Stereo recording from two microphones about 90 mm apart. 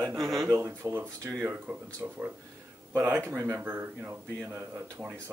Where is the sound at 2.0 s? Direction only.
20° right (ahead or behind).